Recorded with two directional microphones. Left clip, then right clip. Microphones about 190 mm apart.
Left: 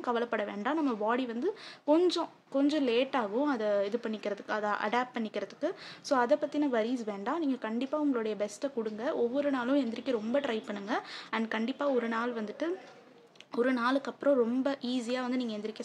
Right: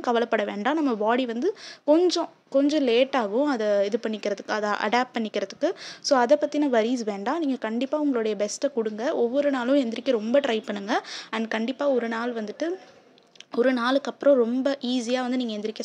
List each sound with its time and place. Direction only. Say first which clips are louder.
0.0 s a woman's voice: right 8 dB; 35° right (ahead or behind)